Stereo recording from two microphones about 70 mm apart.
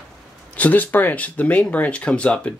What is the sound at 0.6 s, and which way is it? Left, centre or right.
Speech, left.